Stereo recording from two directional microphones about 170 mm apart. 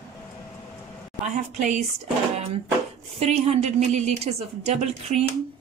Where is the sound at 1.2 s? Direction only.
45° right (ahead or behind).